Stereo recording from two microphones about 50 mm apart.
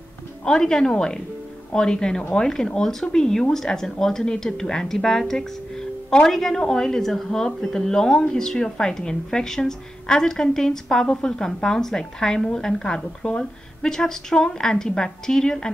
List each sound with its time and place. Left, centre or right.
0.5 s a woman's voice: centre
5.3 s music: centre
6.2 s a woman's voice: centre